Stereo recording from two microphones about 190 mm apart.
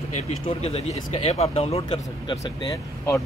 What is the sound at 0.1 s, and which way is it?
Speech, 35° left (ahead or behind).